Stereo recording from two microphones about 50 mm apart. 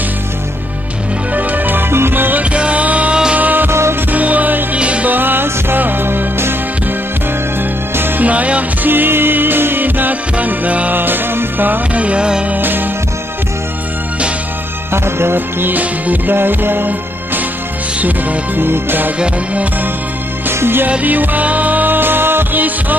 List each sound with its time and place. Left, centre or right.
1.3 s music: right
2.5 s music: right
5.1 s music: right
8.2 s music: right
8.9 s music: right
11.0 s music: right
11.9 s music: right
12.4 s music: right
14.9 s music: right
16.3 s music: right
18.6 s music: right
19.1 s music: right
20.4 s music: right
21.0 s music: right